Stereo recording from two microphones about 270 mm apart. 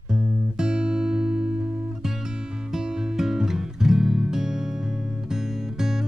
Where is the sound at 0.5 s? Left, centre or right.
Centre.